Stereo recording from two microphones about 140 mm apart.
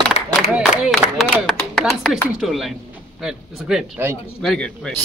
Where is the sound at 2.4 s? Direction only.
Centre (ahead or behind).